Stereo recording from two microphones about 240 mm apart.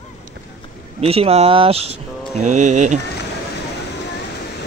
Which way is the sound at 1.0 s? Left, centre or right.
Right.